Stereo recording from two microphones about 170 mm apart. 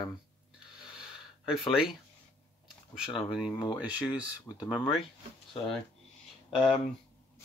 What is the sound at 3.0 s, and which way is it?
Speech, 5° right (ahead or behind).